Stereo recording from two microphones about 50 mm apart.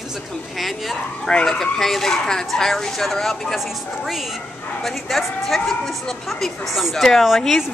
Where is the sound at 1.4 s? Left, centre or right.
Centre.